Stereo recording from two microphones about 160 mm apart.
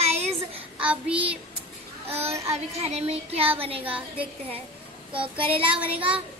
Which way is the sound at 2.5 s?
40° right (ahead or behind).